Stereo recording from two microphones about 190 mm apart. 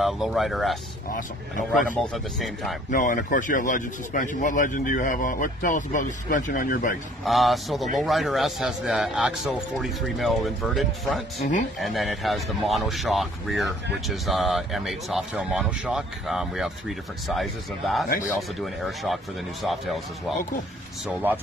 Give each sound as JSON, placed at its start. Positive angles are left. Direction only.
{"t": 0.0, "sound": "a man's voice", "side_deg": 0}
{"t": 2.9, "sound": "speech", "side_deg": 45}
{"t": 7.2, "sound": "a man's voice", "side_deg": 0}